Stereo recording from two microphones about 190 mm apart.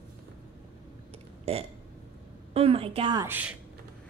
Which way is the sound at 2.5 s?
30° right (ahead or behind).